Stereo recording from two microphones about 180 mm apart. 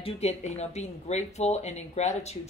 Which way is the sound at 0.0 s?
35° left (ahead or behind).